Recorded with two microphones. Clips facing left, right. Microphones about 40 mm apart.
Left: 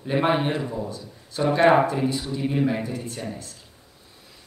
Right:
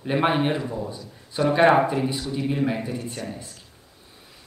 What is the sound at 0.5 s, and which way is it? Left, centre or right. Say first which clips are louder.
Speech: even; centre.